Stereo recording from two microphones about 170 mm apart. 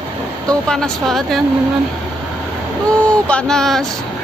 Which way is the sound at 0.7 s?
5° left (ahead or behind).